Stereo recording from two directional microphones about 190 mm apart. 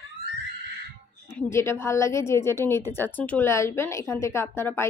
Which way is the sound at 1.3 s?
15° left (ahead or behind).